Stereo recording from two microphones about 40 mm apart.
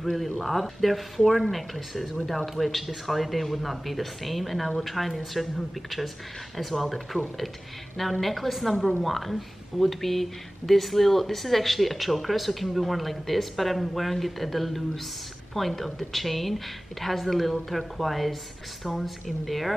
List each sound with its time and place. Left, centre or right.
0.0 s speech: centre